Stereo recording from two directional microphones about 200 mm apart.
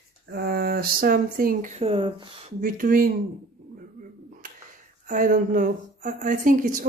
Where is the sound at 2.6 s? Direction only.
45° right (ahead or behind).